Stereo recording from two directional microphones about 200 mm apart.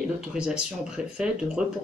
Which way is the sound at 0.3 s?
5° right (ahead or behind).